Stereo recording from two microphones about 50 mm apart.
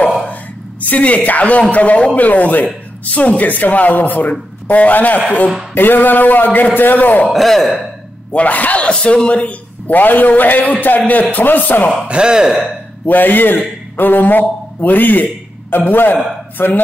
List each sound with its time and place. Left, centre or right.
0.8 s a woman's voice: left
7.3 s speech: centre
8.3 s speech: left
12.1 s speech: centre
13.0 s a man's voice: left